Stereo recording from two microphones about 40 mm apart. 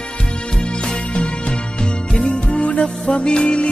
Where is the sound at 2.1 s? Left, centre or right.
Left.